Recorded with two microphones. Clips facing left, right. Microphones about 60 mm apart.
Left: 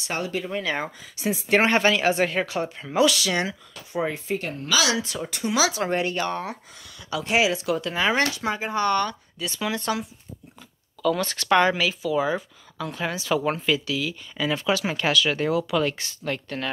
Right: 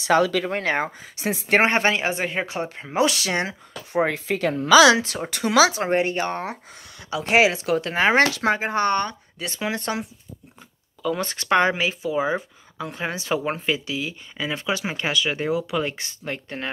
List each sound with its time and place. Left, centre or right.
0.0 s speech: right
1.6 s speech: right
2.0 s speech: centre
2.4 s speech: right
3.9 s speech: right
5.7 s speech: right
7.2 s speech: right
9.6 s speech: right
11.1 s speech: right